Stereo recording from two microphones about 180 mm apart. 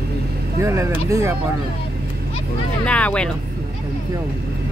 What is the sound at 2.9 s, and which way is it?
Speech, 5° left (ahead or behind).